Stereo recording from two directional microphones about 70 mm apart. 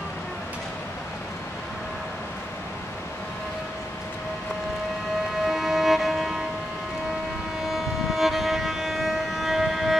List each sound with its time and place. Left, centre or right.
5.4 s music: centre
7.7 s music: centre